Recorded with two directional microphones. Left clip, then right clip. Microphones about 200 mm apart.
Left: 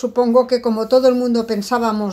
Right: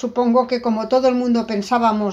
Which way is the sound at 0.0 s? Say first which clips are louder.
Left 3 dB; 30° left (ahead or behind).